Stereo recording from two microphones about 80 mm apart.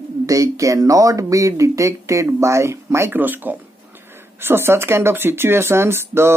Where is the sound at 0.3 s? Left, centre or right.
Right.